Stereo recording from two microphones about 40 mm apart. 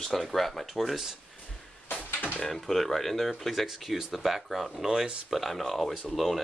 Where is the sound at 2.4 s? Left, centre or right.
Centre.